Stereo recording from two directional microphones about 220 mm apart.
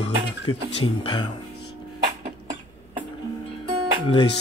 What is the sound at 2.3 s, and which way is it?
Tick-tock, 35° right (ahead or behind).